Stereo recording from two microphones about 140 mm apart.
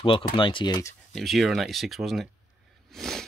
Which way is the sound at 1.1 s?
Centre (ahead or behind).